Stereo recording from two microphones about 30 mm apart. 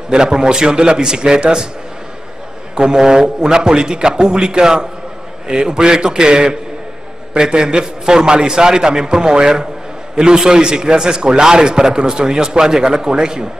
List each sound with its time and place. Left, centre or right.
0.1 s a man's voice: right
2.7 s a man's voice: right